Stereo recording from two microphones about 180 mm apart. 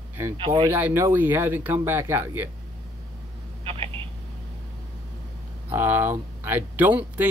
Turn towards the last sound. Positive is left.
turn(degrees=-10)  # may be behind; listen again after turning